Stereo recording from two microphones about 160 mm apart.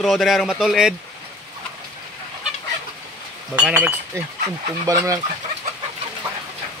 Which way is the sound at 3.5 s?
5° right (ahead or behind).